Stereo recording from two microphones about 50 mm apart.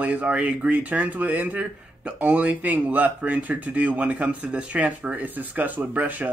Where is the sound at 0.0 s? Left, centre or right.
Right.